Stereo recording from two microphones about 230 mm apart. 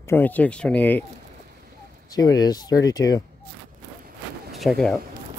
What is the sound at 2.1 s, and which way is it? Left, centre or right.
Speech, centre.